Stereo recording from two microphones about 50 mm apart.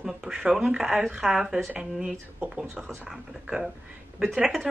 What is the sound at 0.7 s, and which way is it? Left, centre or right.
A woman's voice, centre.